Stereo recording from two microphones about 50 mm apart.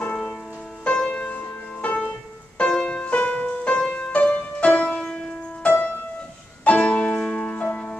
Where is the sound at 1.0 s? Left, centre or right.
Left.